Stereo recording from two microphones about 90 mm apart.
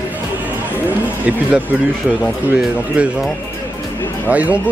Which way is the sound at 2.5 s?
15° right (ahead or behind).